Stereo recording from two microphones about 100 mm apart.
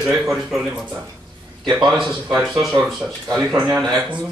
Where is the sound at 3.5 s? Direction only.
15° right (ahead or behind).